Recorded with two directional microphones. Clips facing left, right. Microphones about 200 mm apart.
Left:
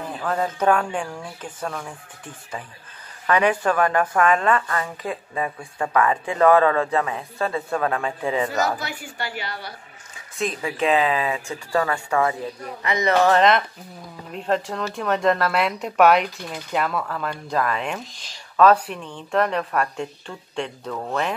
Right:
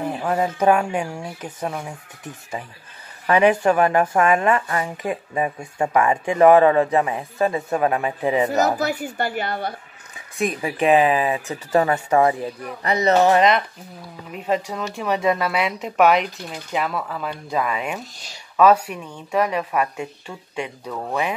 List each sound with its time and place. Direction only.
0.0 s a sound: 20° right (ahead or behind)
0.4 s a woman's voice: 10° right (ahead or behind)
1.0 s speech: 25° right (ahead or behind)
1.4 s a woman's voice: 15° right (ahead or behind)
4.0 s speech: 25° right (ahead or behind)
4.3 s a woman's voice: 15° right (ahead or behind)
8.9 s a woman's voice: 45° right (ahead or behind)
10.3 s a woman's voice: 15° right (ahead or behind)
12.8 s speech: 35° right (ahead or behind)
13.4 s a woman's voice: centre (ahead or behind)